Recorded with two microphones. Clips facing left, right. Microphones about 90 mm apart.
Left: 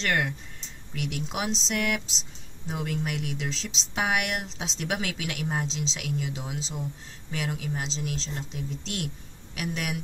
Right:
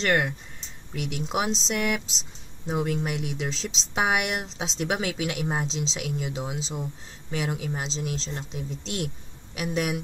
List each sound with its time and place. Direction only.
0.0 s speech: 10° right (ahead or behind)